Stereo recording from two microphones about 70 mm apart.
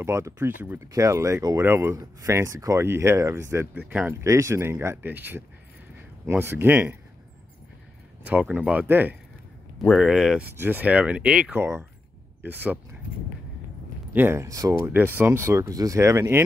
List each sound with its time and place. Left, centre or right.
0.0 s speech: right
3.7 s speech: right
4.1 s speech: right
8.3 s speech: right
9.9 s speech: centre
10.4 s speech: right; by 11.5 s centre
11.5 s speech: right
14.1 s speech: right
14.4 s speech: right
14.9 s speech: right
15.6 s speech: right